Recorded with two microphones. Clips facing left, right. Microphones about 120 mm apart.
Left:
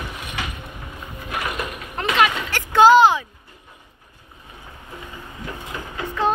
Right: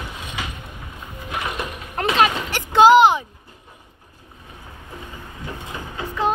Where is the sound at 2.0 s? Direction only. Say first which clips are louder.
Right 1 dB; 30° right (ahead or behind).